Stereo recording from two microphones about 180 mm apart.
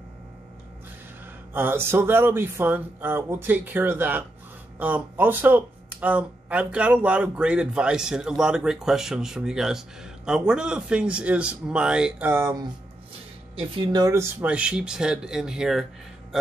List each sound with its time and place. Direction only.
1.5 s speech: 10° right (ahead or behind)
13.7 s speech: 20° right (ahead or behind)
14.4 s speech: 5° right (ahead or behind)